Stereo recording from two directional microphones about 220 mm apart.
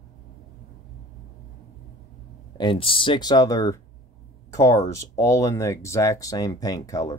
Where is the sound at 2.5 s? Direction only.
20° left (ahead or behind).